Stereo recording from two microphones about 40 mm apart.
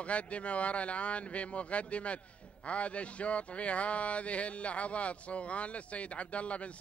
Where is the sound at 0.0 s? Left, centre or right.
Left.